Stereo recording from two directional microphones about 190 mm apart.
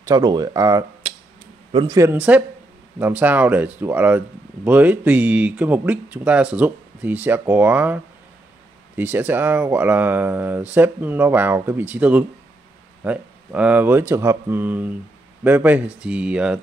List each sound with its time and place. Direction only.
0.0 s speech: 20° right (ahead or behind)